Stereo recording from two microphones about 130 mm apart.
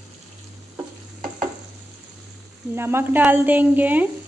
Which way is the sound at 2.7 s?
20° right (ahead or behind).